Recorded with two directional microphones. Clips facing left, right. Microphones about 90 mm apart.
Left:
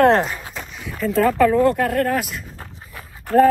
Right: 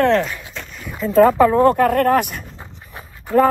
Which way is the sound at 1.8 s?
55° right (ahead or behind).